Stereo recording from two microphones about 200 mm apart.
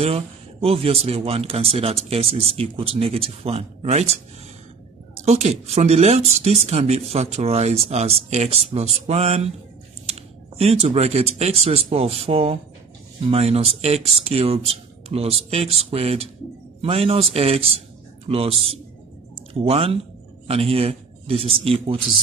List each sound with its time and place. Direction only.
0.0 s speech: 30° right (ahead or behind)
5.2 s speech: 30° right (ahead or behind)